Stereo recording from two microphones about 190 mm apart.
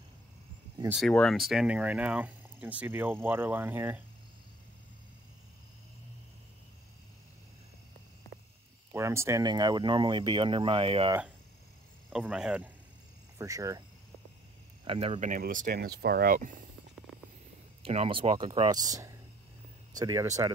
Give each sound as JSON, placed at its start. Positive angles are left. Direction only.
{"t": 0.9, "sound": "speech", "side_deg": 5}
{"t": 8.9, "sound": "speech", "side_deg": -15}
{"t": 12.1, "sound": "speech", "side_deg": -5}
{"t": 13.4, "sound": "speech", "side_deg": -15}
{"t": 14.9, "sound": "speech", "side_deg": -30}
{"t": 17.8, "sound": "speech", "side_deg": -30}